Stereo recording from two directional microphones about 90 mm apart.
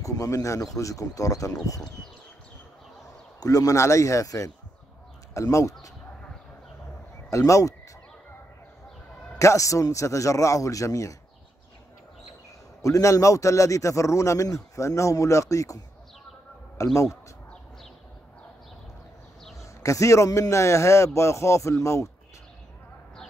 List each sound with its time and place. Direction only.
0.0 s a man's voice: 35° left (ahead or behind)
3.3 s a man's voice: 40° left (ahead or behind)
7.2 s speech: 35° left (ahead or behind)
9.4 s a man's voice: 35° left (ahead or behind)
12.8 s a man's voice: 35° left (ahead or behind)
19.6 s a man's voice: 35° left (ahead or behind)